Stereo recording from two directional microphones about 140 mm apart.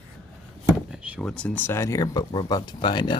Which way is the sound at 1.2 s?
5° left (ahead or behind).